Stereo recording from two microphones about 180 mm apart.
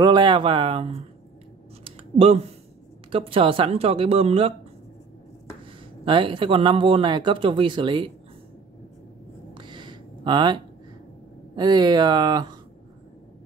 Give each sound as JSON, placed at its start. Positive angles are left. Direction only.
{"t": 0.0, "sound": "speech", "side_deg": -25}
{"t": 1.9, "sound": "clicking", "side_deg": -30}
{"t": 3.1, "sound": "speech", "side_deg": -30}
{"t": 6.0, "sound": "speech", "side_deg": -30}
{"t": 9.5, "sound": "a sound", "side_deg": -25}
{"t": 11.5, "sound": "speech", "side_deg": -25}